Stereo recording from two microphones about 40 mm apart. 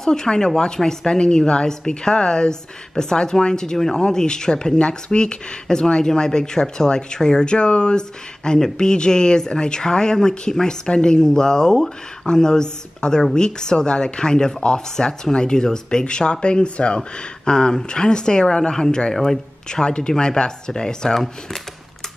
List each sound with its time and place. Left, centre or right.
0.0 s speech: centre
17.5 s speech: centre
19.1 s speech: centre